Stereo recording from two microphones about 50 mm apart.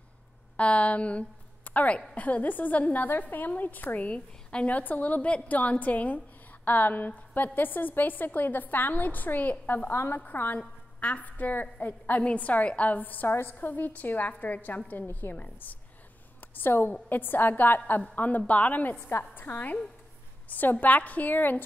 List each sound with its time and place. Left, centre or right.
0.6 s a woman's voice: left
16.5 s a woman's voice: left
18.9 s a woman's voice: left